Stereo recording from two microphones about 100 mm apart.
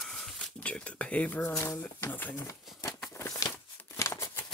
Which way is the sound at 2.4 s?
30° left (ahead or behind).